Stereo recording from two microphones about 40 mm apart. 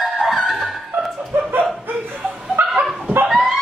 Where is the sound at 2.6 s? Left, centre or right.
Right.